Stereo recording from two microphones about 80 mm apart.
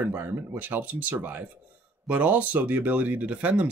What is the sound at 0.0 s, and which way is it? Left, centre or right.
Speech, right.